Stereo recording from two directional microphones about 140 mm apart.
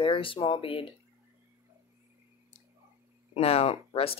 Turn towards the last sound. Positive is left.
turn(degrees=45)  # may be behind; listen again after turning